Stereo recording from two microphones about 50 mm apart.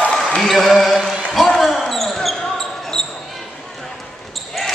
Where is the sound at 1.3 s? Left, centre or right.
Centre.